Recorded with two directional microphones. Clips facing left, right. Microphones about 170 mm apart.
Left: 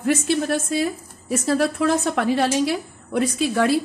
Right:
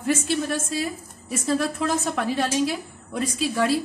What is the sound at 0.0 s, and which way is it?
A woman's voice, 65° left (ahead or behind).